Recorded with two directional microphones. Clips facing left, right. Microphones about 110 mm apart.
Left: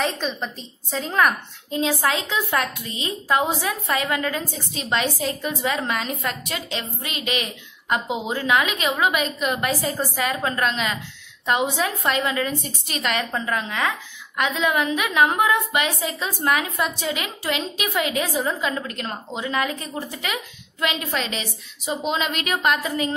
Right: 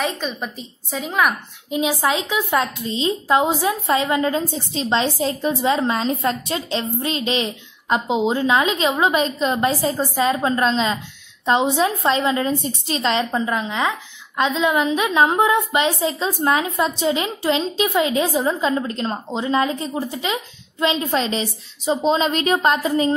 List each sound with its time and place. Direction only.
0.2 s a woman's voice: centre (ahead or behind); by 23.1 s 30° right (ahead or behind)